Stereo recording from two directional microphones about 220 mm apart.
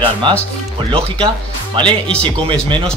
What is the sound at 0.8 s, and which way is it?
Speech, 25° right (ahead or behind).